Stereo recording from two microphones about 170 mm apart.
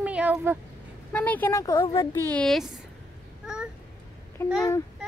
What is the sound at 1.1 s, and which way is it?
Speech, 10° left (ahead or behind).